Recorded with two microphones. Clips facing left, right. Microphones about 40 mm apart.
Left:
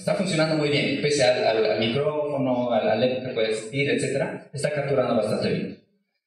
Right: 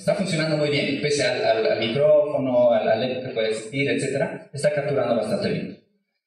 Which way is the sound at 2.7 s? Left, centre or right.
Centre.